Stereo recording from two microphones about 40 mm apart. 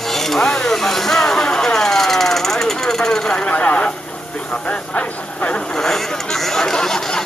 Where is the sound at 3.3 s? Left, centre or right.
Left.